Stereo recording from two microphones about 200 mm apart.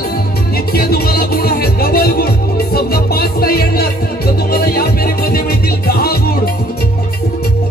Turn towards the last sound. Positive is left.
turn(degrees=50)  # may be behind; listen again after turning